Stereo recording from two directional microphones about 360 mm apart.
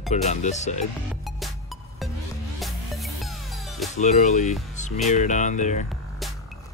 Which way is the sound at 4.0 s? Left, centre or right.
Centre.